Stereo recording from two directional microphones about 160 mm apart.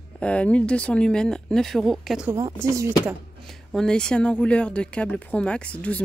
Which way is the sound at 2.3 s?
15° right (ahead or behind).